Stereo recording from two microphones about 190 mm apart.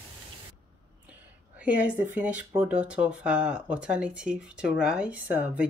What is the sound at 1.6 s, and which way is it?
A woman's voice, 5° right (ahead or behind).